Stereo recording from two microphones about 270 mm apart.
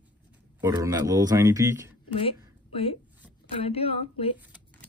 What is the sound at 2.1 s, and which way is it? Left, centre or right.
Speech, left.